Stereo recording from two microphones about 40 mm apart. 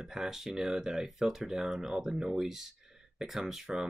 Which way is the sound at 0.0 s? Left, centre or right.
Centre.